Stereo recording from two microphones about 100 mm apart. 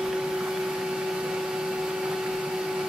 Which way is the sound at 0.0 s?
5° right (ahead or behind).